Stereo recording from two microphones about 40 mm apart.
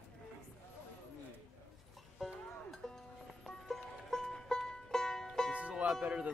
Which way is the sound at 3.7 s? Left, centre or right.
Centre.